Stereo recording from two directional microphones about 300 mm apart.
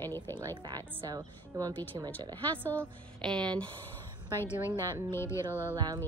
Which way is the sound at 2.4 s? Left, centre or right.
Centre.